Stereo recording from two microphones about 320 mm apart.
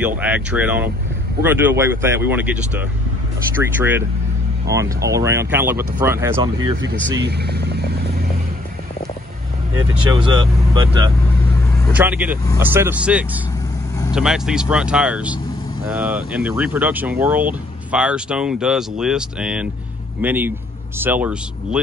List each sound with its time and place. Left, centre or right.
0.0 s speech: centre
6.8 s speech: right
10.7 s speech: centre